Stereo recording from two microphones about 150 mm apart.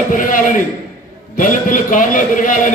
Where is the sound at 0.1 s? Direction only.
60° left (ahead or behind).